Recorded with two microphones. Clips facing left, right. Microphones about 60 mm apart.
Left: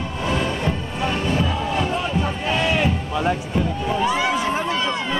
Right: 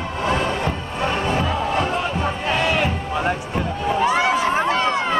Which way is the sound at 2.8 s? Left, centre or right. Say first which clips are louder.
Even; right.